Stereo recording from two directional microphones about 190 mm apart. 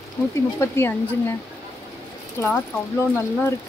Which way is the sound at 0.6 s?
15° left (ahead or behind).